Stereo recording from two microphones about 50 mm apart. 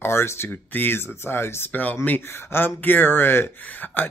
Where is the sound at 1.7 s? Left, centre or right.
Left.